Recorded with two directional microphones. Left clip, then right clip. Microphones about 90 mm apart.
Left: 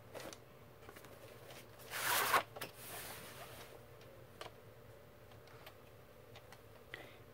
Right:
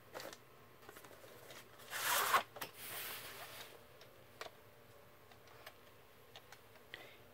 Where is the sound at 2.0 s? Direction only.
15° left (ahead or behind).